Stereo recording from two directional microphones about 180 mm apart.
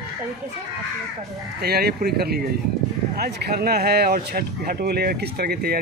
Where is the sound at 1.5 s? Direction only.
60° right (ahead or behind).